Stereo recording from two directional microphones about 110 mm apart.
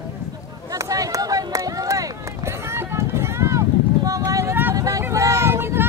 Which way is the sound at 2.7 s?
20° right (ahead or behind).